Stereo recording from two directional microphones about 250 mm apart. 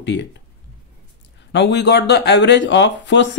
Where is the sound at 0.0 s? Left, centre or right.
Left.